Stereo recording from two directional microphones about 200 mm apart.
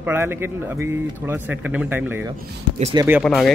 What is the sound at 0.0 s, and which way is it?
Speech, 10° right (ahead or behind).